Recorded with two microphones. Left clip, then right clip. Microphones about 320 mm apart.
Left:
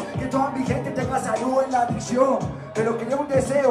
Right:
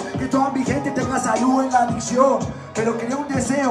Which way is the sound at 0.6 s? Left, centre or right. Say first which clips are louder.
Right 3 dB; right.